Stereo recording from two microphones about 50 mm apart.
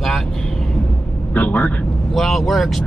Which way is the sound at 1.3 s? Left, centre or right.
Left.